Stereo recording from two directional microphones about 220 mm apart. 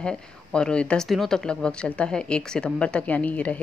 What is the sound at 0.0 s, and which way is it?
Speech, 5° left (ahead or behind).